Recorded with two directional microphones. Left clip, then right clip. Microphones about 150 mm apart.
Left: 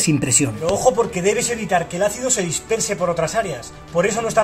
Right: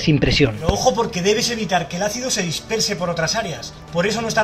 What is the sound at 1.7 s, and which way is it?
Speech, 20° left (ahead or behind).